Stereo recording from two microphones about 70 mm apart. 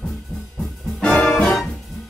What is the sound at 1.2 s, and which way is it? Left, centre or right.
Music, centre.